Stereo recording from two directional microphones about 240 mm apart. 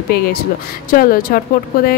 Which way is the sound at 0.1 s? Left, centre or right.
Left.